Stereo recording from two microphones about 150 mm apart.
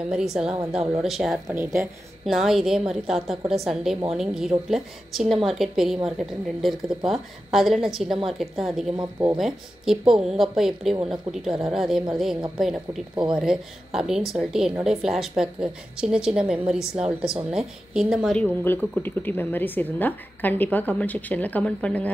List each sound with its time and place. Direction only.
0.1 s a woman's voice: 5° right (ahead or behind)
1.5 s a woman's voice: 15° right (ahead or behind)
2.2 s a woman's voice: centre (ahead or behind)